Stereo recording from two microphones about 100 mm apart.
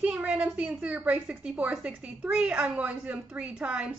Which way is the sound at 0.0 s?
15° right (ahead or behind).